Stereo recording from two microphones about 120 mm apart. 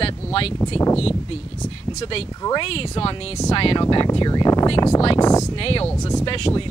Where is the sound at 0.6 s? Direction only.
20° left (ahead or behind).